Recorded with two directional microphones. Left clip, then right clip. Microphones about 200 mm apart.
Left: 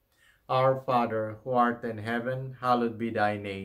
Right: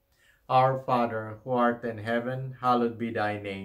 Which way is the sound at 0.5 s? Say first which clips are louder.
Right 2 dB; 35° left (ahead or behind).